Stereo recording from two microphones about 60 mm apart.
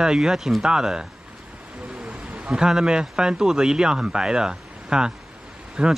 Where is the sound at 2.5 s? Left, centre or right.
Centre.